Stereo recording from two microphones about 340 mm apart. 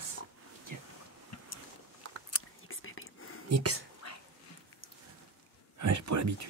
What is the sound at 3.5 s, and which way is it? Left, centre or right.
Speech, right.